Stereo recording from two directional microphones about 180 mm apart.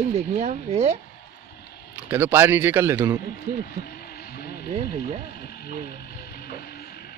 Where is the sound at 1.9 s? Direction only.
10° right (ahead or behind).